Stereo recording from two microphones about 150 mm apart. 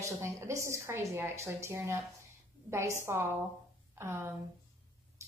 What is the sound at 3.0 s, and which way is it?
A woman's voice, 15° right (ahead or behind).